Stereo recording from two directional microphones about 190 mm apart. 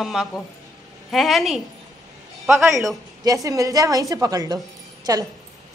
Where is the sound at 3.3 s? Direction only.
15° right (ahead or behind).